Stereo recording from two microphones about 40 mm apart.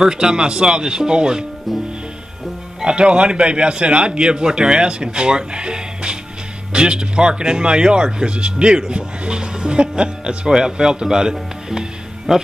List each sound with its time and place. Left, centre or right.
0.0 s a man's voice: right
2.8 s a man's voice: right